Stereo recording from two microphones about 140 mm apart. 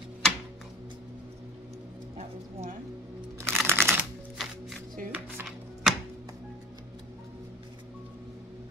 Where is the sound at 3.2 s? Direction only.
15° right (ahead or behind).